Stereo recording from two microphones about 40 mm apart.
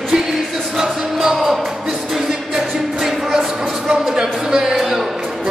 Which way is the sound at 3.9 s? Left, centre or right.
Centre.